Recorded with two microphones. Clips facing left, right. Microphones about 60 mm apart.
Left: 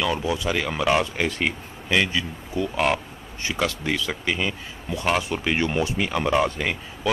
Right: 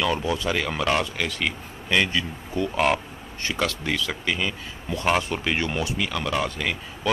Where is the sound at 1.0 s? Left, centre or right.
Left.